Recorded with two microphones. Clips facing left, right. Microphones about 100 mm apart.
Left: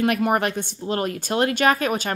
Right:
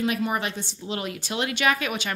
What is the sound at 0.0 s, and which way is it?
Speech, 55° left (ahead or behind).